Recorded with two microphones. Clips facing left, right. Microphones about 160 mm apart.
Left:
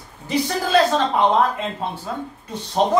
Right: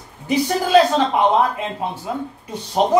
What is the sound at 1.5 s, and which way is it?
A man's voice, 15° right (ahead or behind).